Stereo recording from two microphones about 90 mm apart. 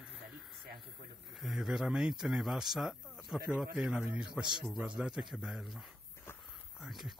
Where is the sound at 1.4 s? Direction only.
5° right (ahead or behind).